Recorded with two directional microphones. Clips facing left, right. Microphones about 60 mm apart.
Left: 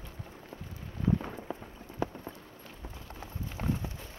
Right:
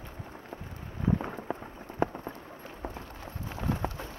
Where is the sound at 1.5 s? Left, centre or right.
Right.